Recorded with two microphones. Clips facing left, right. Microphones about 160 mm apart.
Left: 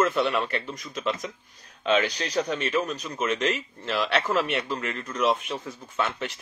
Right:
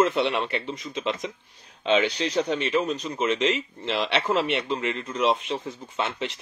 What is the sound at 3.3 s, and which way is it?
Speech, 50° left (ahead or behind).